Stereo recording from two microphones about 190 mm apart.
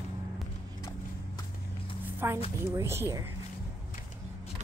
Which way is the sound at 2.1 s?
10° right (ahead or behind).